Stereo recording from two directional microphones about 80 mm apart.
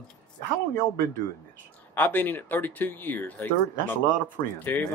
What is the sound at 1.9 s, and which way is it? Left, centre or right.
Speech, left.